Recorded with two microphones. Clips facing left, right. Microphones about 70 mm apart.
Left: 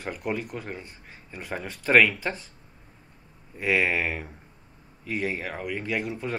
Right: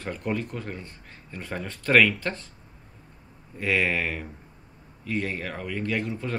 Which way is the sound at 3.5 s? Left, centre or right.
Centre.